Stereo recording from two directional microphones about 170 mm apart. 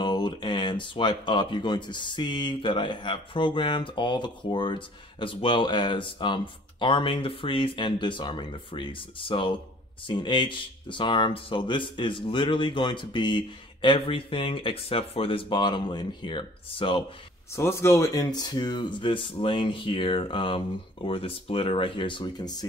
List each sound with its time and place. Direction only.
0.0 s speech: 25° left (ahead or behind)
17.6 s speech: 15° left (ahead or behind)